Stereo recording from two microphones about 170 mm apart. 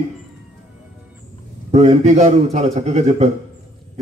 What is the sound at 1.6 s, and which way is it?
A man's voice, 40° right (ahead or behind).